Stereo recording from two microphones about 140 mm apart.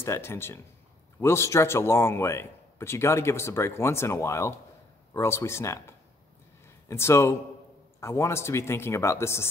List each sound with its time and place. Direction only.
0.0 s a man's voice: 15° left (ahead or behind)